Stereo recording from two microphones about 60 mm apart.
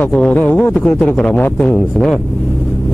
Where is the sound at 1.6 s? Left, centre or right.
Centre.